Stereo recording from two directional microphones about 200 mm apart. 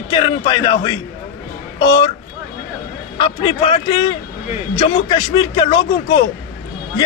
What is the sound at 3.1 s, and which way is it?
A man's voice, 25° left (ahead or behind).